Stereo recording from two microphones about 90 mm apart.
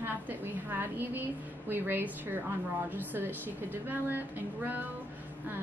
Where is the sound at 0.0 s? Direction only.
20° right (ahead or behind).